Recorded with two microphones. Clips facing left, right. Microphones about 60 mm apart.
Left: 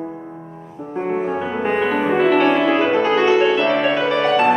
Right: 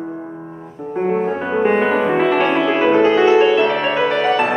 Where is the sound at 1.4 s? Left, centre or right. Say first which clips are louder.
Right 4 dB; right.